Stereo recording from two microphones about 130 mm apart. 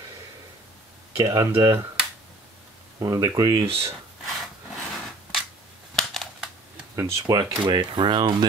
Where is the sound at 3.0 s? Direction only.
30° right (ahead or behind).